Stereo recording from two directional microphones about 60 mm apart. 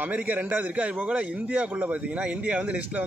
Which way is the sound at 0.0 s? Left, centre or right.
Right.